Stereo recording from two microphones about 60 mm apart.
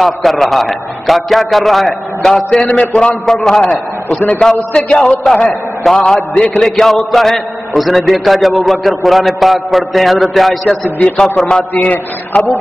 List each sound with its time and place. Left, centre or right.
0.0 s a man's voice: centre
11.1 s a man's voice: centre
11.7 s a man's voice: left